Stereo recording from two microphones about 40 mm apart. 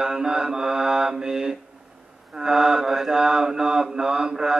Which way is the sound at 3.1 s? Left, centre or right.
Centre.